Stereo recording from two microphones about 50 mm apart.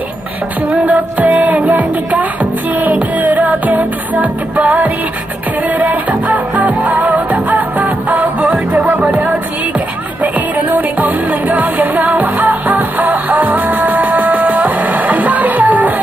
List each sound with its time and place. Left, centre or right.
0.7 s music: right